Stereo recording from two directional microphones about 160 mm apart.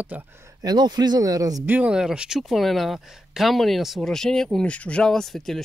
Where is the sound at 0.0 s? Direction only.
10° right (ahead or behind).